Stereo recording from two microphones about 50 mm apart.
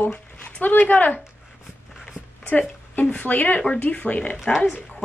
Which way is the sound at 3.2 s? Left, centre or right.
Left.